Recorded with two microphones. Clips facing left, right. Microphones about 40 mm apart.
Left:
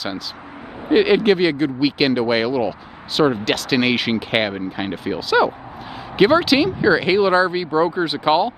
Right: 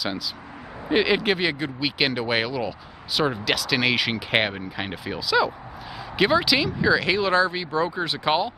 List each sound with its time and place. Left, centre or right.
0.9 s speech: centre
5.0 s speech: centre